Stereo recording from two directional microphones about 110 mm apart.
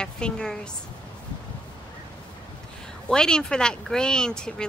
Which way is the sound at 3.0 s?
5° left (ahead or behind).